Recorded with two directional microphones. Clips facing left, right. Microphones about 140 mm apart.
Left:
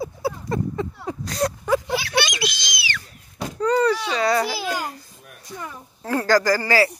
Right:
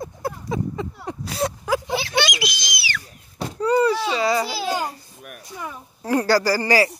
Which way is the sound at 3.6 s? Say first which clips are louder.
Right 1 dB; 10° right (ahead or behind).